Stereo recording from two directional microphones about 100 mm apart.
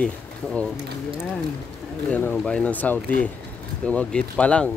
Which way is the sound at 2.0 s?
15° left (ahead or behind).